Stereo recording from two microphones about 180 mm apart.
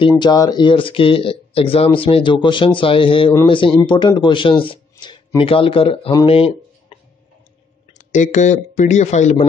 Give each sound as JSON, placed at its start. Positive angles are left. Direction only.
{"t": 0.0, "sound": "speech", "side_deg": 25}
{"t": 8.1, "sound": "speech", "side_deg": 40}